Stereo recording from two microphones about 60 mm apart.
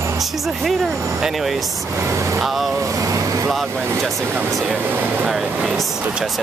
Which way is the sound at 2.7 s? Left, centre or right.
Right.